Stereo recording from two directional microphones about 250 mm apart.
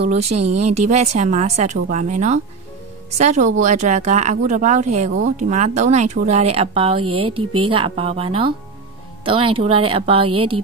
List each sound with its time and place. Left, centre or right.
0.3 s a woman's voice: right